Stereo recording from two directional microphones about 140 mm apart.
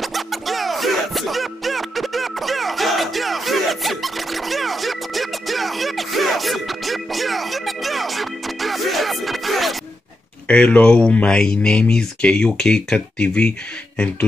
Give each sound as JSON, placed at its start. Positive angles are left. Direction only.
{"t": 0.0, "sound": "music", "side_deg": 0}
{"t": 10.5, "sound": "speech", "side_deg": 10}